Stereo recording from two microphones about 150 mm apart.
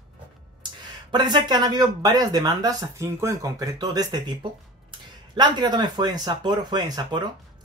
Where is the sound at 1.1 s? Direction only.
30° right (ahead or behind).